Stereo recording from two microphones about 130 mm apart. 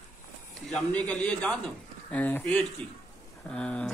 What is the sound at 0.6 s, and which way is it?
Speech, 5° left (ahead or behind).